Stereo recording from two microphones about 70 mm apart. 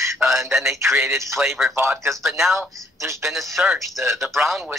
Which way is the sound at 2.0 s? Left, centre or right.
Centre.